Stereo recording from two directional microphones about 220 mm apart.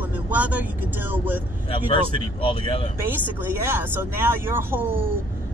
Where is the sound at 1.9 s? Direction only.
25° left (ahead or behind).